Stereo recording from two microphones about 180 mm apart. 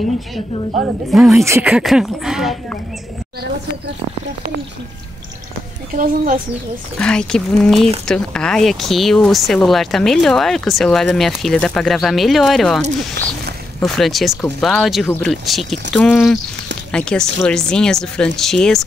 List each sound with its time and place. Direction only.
0.8 s speech: centre (ahead or behind)
1.4 s speech: 15° right (ahead or behind)
1.7 s speech: 5° right (ahead or behind)
5.9 s speech: 45° right (ahead or behind)
7.0 s speech: 5° left (ahead or behind)